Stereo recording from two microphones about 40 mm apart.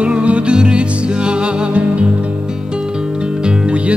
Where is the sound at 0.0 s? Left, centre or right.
Right.